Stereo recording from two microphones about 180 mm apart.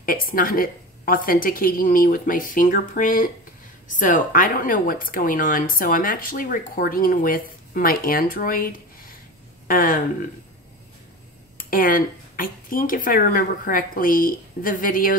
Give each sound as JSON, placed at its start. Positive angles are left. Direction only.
{"t": 0.0, "sound": "a woman's voice", "side_deg": 50}
{"t": 11.5, "sound": "a woman's voice", "side_deg": 50}